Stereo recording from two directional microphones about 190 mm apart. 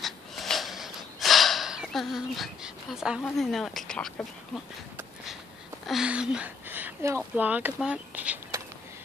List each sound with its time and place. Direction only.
0.0 s snort: centre (ahead or behind)
4.9 s a sound: centre (ahead or behind)
5.9 s speech: 5° right (ahead or behind)